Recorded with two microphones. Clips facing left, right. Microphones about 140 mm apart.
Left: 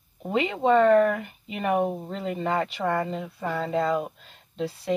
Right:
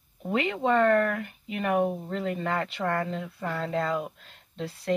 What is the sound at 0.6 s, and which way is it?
Speech, 5° left (ahead or behind).